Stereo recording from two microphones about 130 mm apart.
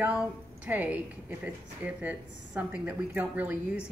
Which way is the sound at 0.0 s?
10° right (ahead or behind).